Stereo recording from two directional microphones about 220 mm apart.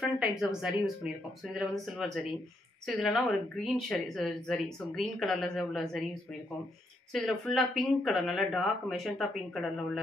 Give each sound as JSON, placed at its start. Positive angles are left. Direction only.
{"t": 0.0, "sound": "speech", "side_deg": 0}
{"t": 7.1, "sound": "speech", "side_deg": 0}